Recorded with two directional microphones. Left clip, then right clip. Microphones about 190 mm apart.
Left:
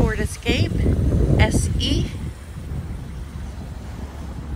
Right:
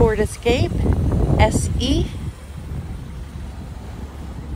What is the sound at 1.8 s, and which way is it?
Speech, 45° right (ahead or behind).